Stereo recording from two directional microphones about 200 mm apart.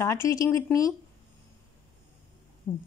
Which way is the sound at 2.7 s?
5° left (ahead or behind).